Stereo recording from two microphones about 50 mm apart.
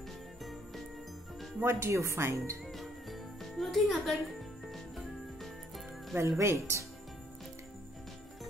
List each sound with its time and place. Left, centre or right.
1.6 s speech: right
2.6 s jingle bell: centre
6.1 s speech: right